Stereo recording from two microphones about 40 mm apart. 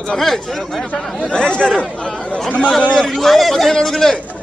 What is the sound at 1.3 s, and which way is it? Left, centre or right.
Speech, left.